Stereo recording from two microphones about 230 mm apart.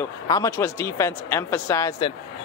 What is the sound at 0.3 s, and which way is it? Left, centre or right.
Speech, centre.